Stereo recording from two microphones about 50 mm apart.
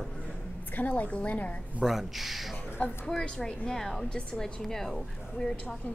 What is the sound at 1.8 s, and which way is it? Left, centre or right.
Speech, centre.